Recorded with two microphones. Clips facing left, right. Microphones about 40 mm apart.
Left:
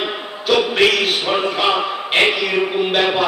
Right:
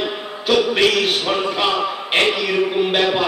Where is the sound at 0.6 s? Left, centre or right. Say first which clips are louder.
Left 1 dB; centre.